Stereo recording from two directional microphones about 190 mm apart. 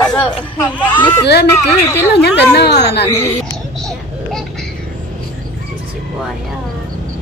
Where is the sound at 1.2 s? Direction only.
60° left (ahead or behind).